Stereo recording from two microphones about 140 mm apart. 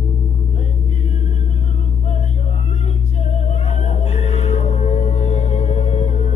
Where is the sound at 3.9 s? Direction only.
55° left (ahead or behind).